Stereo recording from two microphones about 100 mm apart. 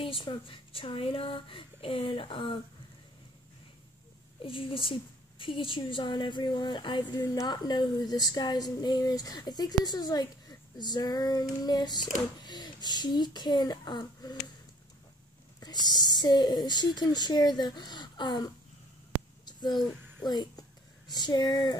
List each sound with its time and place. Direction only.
0.0 s speech: 60° left (ahead or behind)
4.4 s a woman's voice: 60° left (ahead or behind)
15.6 s a woman's voice: 45° left (ahead or behind)
19.4 s a sound: 45° left (ahead or behind)
20.2 s a woman's voice: 45° left (ahead or behind)